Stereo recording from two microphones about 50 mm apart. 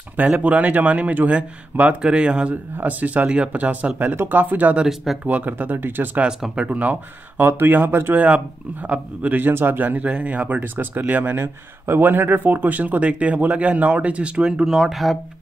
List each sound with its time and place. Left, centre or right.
0.2 s speech: right
2.9 s speech: right
4.3 s speech: right
4.8 s speech: centre
5.2 s speech: right
6.7 s speech: right
7.3 s speech: right
8.8 s speech: right
9.5 s speech: right
10.0 s speech: right
10.6 s speech: right
11.3 s speech: right
14.3 s speech: centre
14.7 s speech: centre